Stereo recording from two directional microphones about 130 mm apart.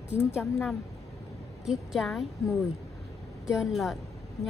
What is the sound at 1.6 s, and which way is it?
A woman's voice, centre (ahead or behind).